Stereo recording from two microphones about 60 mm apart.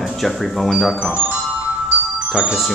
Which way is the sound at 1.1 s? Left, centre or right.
Right.